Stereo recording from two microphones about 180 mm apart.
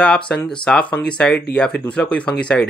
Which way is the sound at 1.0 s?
90° left.